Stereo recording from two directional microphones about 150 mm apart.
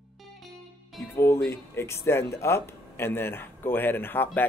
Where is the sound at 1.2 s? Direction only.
15° left (ahead or behind).